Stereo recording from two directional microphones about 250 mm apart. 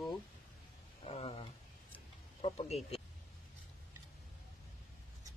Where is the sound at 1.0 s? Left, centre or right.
Left.